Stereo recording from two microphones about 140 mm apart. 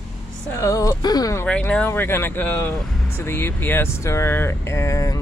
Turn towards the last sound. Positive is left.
turn(degrees=20)  # may be behind; listen again after turning